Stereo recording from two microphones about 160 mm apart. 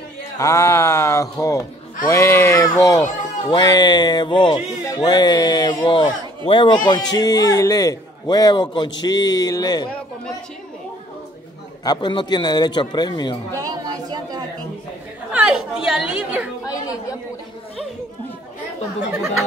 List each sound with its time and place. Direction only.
0.4 s speech: 20° left (ahead or behind)
11.8 s speech: 30° left (ahead or behind)
13.6 s chatter: 25° right (ahead or behind)
15.3 s a woman's voice: 5° right (ahead or behind)
16.6 s chatter: 20° left (ahead or behind)